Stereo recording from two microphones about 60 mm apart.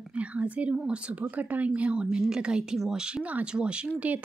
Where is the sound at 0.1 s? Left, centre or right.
Right.